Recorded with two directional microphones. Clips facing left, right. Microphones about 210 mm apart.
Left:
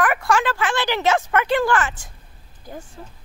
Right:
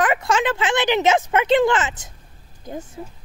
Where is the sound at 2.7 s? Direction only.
20° right (ahead or behind).